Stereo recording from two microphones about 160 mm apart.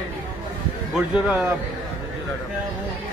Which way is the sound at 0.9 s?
5° right (ahead or behind).